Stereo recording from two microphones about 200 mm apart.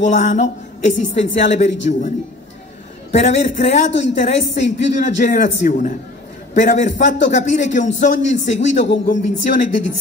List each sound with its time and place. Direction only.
0.0 s a man's voice: 35° left (ahead or behind)
3.1 s a man's voice: 35° left (ahead or behind)